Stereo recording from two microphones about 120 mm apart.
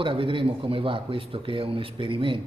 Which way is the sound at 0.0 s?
45° right (ahead or behind).